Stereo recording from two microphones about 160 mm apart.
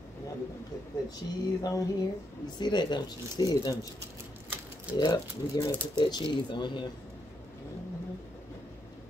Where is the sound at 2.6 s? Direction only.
30° left (ahead or behind).